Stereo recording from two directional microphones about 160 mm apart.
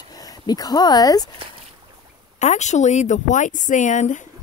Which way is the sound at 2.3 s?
45° left (ahead or behind).